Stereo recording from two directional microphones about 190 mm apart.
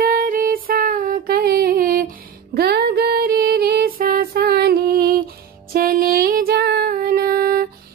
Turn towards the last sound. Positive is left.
turn(degrees=-50)  # may be behind; listen again after turning